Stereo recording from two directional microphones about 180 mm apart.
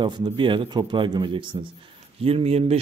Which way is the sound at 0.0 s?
25° right (ahead or behind).